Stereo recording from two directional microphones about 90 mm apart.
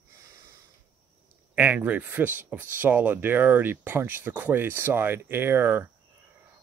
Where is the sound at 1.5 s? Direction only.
15° right (ahead or behind).